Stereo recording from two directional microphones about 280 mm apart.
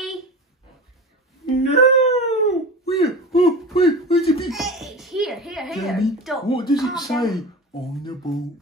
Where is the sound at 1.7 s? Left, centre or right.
Left.